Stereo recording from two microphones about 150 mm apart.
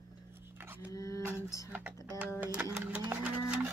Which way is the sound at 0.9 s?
20° left (ahead or behind).